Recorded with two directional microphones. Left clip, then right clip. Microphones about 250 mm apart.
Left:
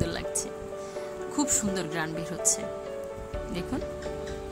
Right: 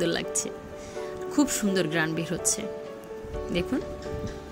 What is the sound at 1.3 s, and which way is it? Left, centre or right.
Speech, centre.